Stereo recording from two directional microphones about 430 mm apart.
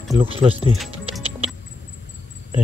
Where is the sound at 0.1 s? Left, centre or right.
Centre.